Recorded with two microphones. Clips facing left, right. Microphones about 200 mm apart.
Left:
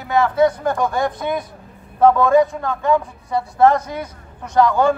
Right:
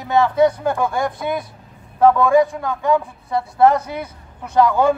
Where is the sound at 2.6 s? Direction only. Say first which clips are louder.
Even; 15° right (ahead or behind).